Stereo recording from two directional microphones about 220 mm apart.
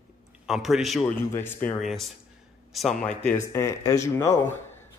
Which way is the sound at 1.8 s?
Centre (ahead or behind).